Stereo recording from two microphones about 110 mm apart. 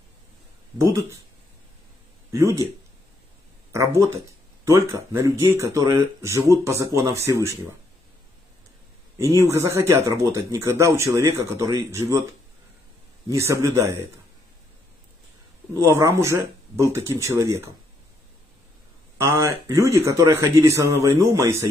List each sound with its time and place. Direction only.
0.7 s speech: 25° right (ahead or behind)
2.3 s speech: 25° right (ahead or behind)
3.7 s speech: 25° right (ahead or behind)
9.4 s speech: 25° right (ahead or behind)
13.3 s speech: 25° right (ahead or behind)
15.8 s speech: 25° right (ahead or behind)
19.1 s speech: 25° right (ahead or behind)